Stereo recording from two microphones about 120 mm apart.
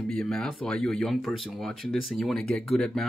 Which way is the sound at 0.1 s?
5° left (ahead or behind).